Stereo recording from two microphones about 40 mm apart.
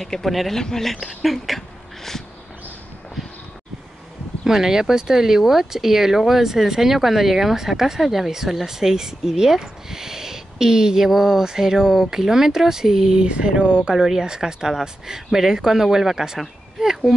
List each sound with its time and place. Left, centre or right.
0.0 s speech: centre
0.6 s speech: centre
1.0 s speech: centre
4.5 s speech: centre
13.2 s speech: right; by 17.1 s centre